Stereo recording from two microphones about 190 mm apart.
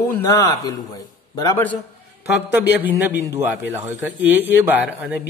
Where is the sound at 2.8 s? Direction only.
10° right (ahead or behind).